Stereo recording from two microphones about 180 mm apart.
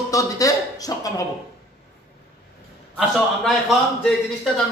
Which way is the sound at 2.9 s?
Centre (ahead or behind).